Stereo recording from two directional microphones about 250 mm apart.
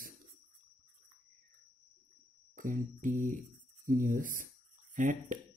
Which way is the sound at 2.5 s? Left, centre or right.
Right.